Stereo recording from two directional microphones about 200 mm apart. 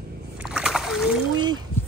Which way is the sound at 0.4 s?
5° right (ahead or behind).